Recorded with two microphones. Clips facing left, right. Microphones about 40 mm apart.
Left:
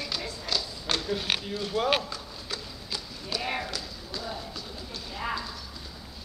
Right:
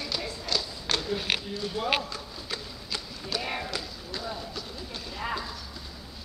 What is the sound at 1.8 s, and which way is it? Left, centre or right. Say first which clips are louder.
Speech: left 5 dB; left.